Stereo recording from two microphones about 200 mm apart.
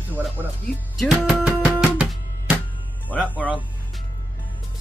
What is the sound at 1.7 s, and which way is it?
Music, 5° right (ahead or behind).